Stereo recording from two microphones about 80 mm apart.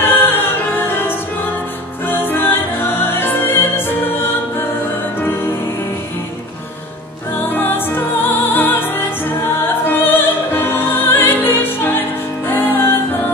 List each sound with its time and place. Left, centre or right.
0.2 s music: left
7.4 s music: left
9.8 s opera: left
12.4 s music: left